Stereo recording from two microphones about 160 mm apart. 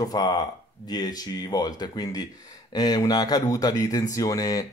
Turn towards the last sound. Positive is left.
turn(degrees=20)  # may be behind; listen again after turning